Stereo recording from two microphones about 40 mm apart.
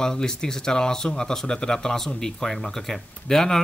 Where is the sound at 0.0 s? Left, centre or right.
Centre.